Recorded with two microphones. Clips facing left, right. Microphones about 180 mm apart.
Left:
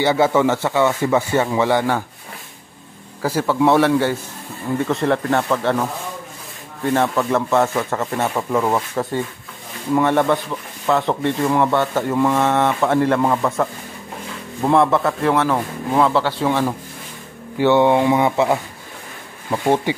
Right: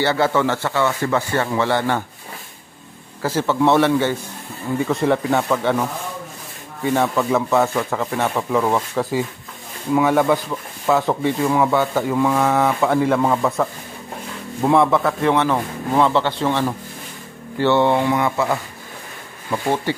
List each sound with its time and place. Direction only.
0.0 s speech: 15° left (ahead or behind)
3.2 s speech: 10° left (ahead or behind)